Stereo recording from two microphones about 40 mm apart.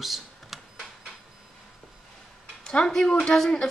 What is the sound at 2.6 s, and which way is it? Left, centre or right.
Speech, centre.